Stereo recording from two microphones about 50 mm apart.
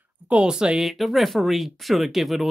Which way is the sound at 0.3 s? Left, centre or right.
Centre.